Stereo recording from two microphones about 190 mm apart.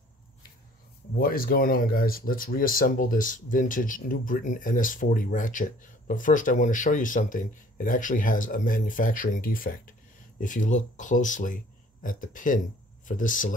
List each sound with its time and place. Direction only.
1.1 s speech: 50° left (ahead or behind)